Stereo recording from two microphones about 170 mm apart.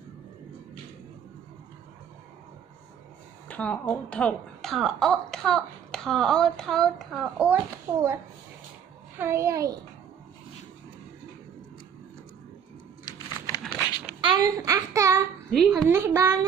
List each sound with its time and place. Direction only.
3.4 s speech: 10° left (ahead or behind); by 8.2 s 10° right (ahead or behind)
9.2 s a child's voice: 15° right (ahead or behind)
13.0 s computer keyboard: 25° left (ahead or behind)
14.2 s a child's voice: 25° right (ahead or behind)
15.5 s speech: centre (ahead or behind)
15.9 s a child's voice: 15° right (ahead or behind)